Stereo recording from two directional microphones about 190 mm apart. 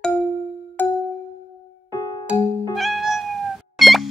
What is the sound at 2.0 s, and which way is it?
Music, 25° left (ahead or behind).